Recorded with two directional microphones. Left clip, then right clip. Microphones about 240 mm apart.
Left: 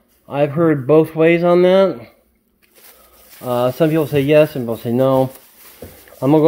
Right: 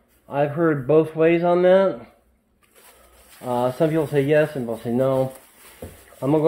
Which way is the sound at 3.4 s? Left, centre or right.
Left.